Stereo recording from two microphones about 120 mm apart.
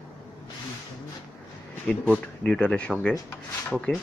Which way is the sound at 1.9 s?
10° left (ahead or behind).